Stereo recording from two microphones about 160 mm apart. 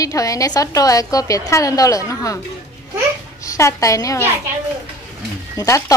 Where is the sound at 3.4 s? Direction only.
20° left (ahead or behind).